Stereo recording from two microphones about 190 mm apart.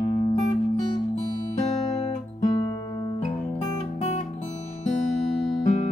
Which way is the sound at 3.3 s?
30° left (ahead or behind).